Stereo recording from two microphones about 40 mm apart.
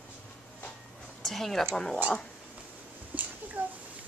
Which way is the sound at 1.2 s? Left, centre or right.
Centre.